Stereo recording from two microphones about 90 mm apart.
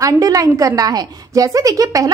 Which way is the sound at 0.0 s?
40° right (ahead or behind).